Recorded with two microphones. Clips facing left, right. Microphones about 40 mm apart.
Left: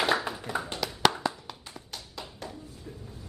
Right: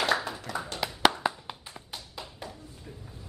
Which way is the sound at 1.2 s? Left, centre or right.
Right.